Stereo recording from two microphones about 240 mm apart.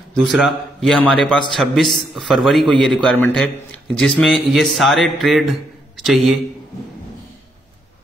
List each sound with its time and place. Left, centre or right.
0.1 s a man's voice: centre